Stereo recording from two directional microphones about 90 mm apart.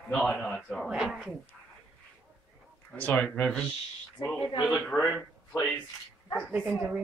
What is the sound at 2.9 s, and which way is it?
Speech, 20° left (ahead or behind).